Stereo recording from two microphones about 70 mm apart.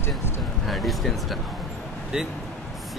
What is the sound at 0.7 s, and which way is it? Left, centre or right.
Speech, centre.